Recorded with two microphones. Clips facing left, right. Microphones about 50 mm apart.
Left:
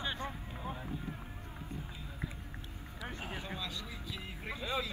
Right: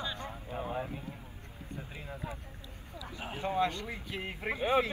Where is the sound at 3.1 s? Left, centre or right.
Right.